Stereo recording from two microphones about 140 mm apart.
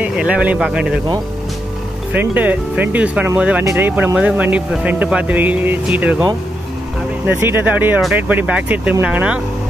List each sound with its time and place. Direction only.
0.0 s speech: 10° right (ahead or behind)
2.1 s speech: 10° right (ahead or behind)
7.2 s speech: 15° right (ahead or behind)